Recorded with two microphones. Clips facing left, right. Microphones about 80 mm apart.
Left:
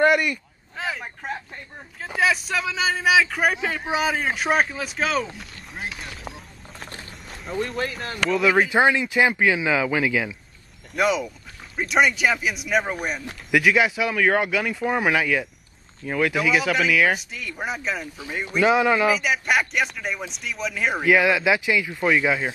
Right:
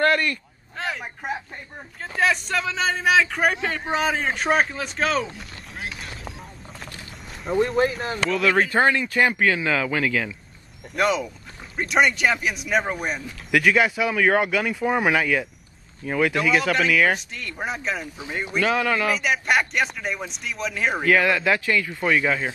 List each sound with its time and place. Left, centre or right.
0.0 s a sound: centre
1.2 s speech: centre
2.0 s speech: centre
5.8 s a sound: centre
7.5 s speech: centre
8.3 s speech: centre
18.7 s speech: centre
19.0 s speech: centre